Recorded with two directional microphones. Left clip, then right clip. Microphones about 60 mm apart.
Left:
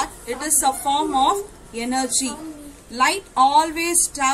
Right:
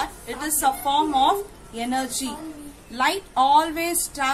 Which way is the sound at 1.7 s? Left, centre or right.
Right.